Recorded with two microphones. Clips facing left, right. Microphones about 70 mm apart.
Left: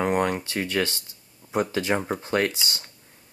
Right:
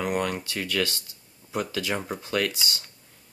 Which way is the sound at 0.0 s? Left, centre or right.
Left.